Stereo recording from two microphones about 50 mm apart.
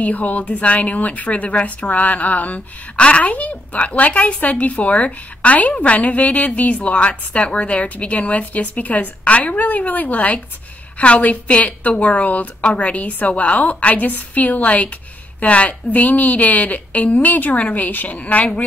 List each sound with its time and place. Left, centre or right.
0.0 s a woman's voice: left